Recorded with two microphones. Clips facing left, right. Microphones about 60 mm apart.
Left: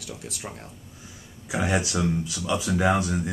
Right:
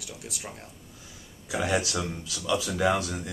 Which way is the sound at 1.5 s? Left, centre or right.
Left.